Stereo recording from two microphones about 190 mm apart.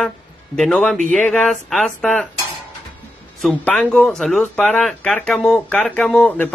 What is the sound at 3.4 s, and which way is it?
Speech, 5° left (ahead or behind).